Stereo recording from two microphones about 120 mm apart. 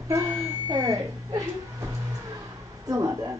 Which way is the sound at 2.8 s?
30° right (ahead or behind).